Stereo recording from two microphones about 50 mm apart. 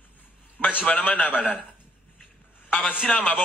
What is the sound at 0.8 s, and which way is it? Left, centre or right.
Speech, left.